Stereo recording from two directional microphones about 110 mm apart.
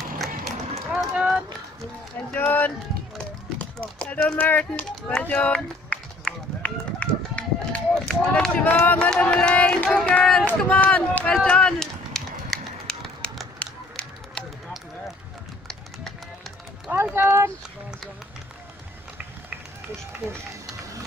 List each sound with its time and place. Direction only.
0.2 s run: 5° right (ahead or behind)
2.3 s speech: 15° left (ahead or behind)
5.2 s run: 10° left (ahead or behind)
16.0 s run: centre (ahead or behind)
16.9 s a sound: 20° right (ahead or behind)